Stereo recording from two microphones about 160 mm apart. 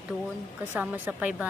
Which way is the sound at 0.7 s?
10° right (ahead or behind).